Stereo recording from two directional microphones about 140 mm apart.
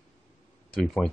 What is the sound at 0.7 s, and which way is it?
Speech, centre (ahead or behind).